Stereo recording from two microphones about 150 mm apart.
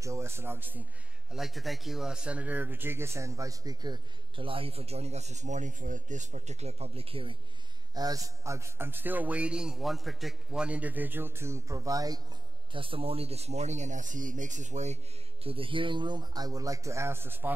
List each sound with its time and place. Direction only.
0.0 s a man's voice: 20° right (ahead or behind)
1.3 s speech: centre (ahead or behind); by 7.3 s 40° right (ahead or behind)
7.9 s a man's voice: 25° right (ahead or behind)
12.7 s speech: 35° right (ahead or behind)
15.4 s speech: 35° right (ahead or behind); by 17.5 s 15° right (ahead or behind)